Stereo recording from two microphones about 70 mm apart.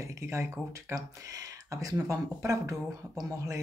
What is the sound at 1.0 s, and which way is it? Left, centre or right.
Speech, right.